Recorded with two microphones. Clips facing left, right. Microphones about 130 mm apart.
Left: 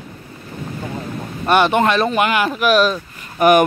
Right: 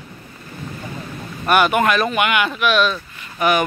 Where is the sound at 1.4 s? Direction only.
30° left (ahead or behind).